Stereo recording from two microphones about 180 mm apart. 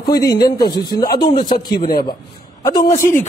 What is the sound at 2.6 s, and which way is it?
Speech, 20° left (ahead or behind).